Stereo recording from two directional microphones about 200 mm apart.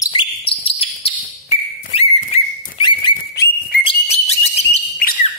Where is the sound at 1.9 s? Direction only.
25° left (ahead or behind).